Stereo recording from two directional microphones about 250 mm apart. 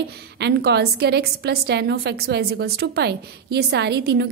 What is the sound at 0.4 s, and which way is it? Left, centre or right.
A woman's voice, right.